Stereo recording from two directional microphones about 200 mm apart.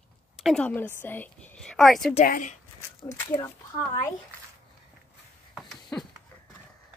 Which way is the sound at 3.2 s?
15° left (ahead or behind).